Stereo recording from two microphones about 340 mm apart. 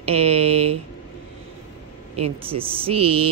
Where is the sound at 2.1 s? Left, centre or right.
Centre.